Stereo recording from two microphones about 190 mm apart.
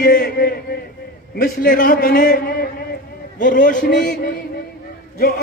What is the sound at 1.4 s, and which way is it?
A man's voice, 50° left (ahead or behind).